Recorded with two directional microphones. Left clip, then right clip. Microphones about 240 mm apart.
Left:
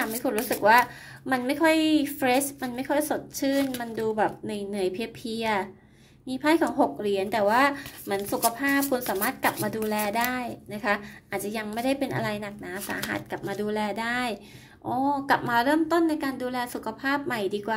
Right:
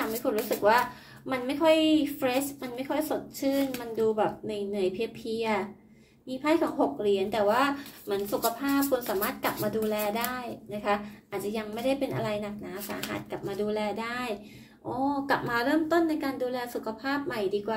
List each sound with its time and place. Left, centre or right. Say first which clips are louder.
0.2 s speech: left 1 dB; left